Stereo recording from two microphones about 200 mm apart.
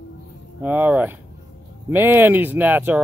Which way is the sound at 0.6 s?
10° right (ahead or behind).